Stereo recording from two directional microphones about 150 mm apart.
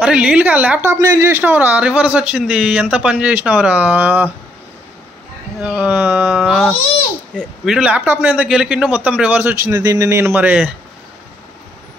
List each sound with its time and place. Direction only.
0.0 s a man's voice: 5° right (ahead or behind)
5.6 s a man's voice: 10° right (ahead or behind)
9.8 s speech: 25° right (ahead or behind)